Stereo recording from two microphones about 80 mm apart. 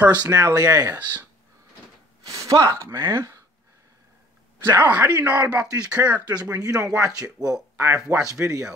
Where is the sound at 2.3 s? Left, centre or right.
Right.